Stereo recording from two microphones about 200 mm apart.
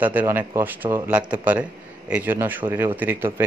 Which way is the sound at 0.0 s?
10° right (ahead or behind).